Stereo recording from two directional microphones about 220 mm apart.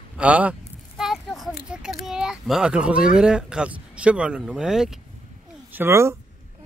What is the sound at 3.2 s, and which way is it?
Speech, 5° right (ahead or behind).